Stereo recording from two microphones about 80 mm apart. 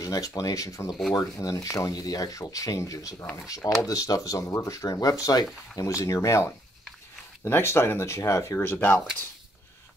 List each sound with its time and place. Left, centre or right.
0.0 s speech: left
7.4 s speech: left
8.5 s speech: left